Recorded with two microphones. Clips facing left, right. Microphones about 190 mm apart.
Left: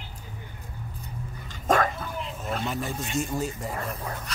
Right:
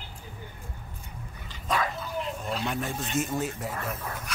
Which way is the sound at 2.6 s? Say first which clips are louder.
Even; centre (ahead or behind).